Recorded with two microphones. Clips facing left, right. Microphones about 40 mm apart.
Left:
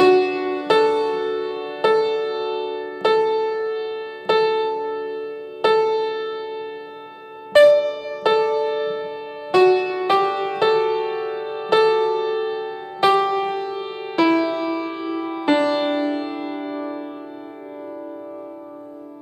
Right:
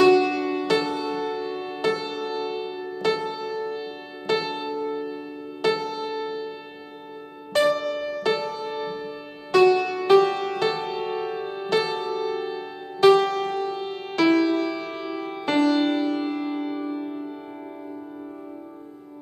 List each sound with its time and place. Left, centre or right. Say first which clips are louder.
0.0 s music: left 2 dB; centre
5.0 s music: left 5 dB; centre
7.6 s music: left 8 dB; centre
8.2 s music: left 11 dB; centre
8.9 s music: left 6 dB; left